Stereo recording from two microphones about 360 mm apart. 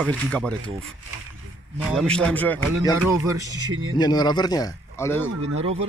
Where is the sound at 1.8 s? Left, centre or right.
Centre.